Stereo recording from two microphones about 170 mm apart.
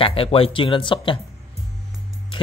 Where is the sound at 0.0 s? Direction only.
35° left (ahead or behind).